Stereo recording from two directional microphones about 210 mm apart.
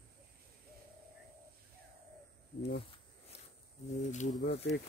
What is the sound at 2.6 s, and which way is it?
Speech, 50° left (ahead or behind).